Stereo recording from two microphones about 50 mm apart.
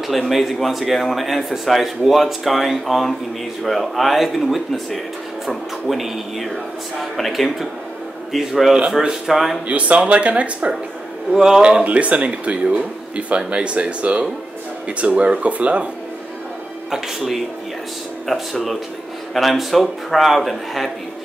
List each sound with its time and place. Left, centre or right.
0.3 s speech: centre
9.7 s speech: right
11.3 s speech: centre
11.6 s speech: right
16.9 s speech: centre